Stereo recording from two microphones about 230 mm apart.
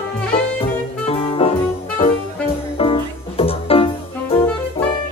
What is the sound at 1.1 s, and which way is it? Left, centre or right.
Music, left.